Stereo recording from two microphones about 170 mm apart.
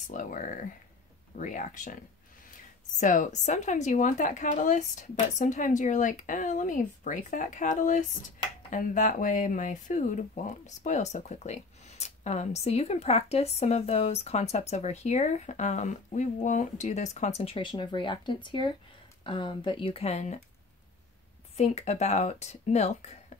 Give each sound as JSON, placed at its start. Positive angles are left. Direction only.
{"t": 0.1, "sound": "a woman's voice", "side_deg": 50}
{"t": 21.5, "sound": "speech", "side_deg": 40}